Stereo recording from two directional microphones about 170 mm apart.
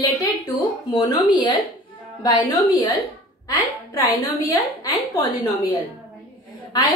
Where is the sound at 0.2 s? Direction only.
20° left (ahead or behind).